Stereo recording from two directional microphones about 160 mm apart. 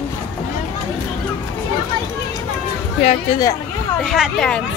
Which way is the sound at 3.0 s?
45° left (ahead or behind).